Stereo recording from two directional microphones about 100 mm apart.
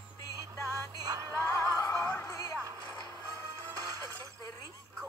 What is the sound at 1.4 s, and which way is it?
Music, 25° left (ahead or behind).